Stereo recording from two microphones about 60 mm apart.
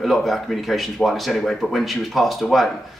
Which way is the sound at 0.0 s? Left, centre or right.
Centre.